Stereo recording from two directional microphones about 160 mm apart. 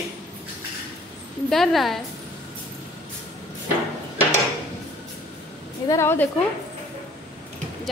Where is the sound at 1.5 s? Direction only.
Centre (ahead or behind).